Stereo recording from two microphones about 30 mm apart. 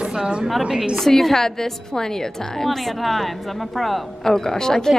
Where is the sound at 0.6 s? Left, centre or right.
Centre.